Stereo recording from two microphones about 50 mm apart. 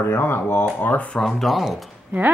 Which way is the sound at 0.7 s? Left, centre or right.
Left.